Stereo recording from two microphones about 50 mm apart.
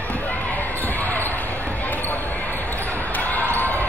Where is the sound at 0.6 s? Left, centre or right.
Left.